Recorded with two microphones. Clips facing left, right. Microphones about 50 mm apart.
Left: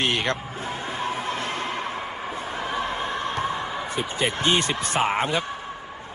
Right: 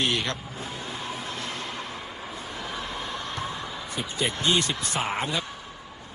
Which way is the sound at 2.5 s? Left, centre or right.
Left.